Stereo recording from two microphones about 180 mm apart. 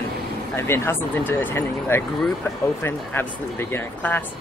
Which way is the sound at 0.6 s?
15° left (ahead or behind).